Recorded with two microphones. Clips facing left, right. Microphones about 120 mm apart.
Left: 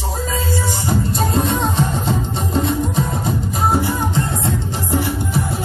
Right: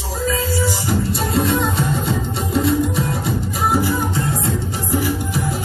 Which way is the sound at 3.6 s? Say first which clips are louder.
Even; 25° left (ahead or behind).